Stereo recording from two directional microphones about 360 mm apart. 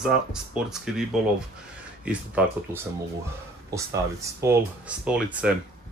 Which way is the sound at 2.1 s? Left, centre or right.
Centre.